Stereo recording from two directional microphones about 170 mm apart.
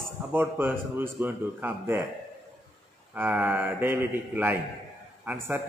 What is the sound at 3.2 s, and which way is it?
Speech, 10° right (ahead or behind).